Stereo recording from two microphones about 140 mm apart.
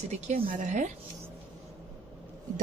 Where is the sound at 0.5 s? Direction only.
60° right (ahead or behind).